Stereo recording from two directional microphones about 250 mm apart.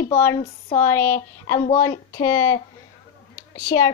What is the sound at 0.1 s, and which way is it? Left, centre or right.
Speech, centre.